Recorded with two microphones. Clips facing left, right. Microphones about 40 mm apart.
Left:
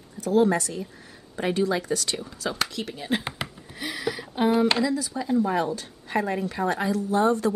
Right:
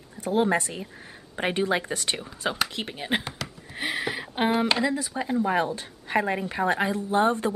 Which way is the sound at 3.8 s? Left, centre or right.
Right.